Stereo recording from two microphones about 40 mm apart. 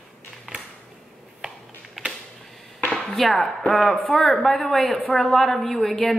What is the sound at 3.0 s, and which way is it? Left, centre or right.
A woman's voice, centre.